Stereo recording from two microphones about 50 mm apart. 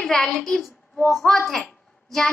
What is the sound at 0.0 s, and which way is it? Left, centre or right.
A child's voice, centre.